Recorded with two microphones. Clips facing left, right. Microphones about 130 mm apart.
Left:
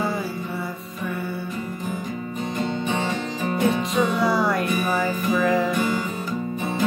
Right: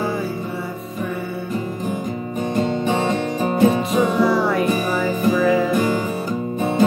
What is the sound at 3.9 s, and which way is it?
Music, centre (ahead or behind).